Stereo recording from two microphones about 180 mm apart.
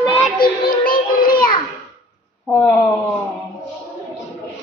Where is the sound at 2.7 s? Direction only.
15° left (ahead or behind).